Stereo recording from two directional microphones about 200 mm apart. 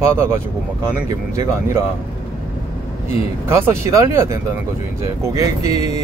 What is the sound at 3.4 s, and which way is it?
Speech, 10° right (ahead or behind).